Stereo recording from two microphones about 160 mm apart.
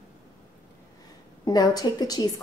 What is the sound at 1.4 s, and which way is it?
Speech, 25° left (ahead or behind).